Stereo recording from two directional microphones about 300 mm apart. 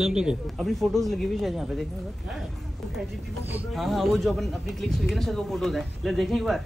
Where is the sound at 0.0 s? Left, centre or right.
Centre.